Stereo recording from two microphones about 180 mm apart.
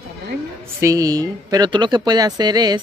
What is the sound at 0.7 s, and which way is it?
Speech, 20° right (ahead or behind).